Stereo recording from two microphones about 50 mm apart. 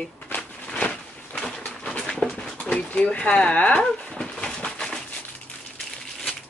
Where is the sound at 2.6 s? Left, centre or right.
Left.